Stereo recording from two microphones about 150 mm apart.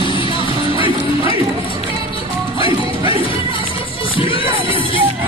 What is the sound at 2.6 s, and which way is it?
Music, 35° right (ahead or behind).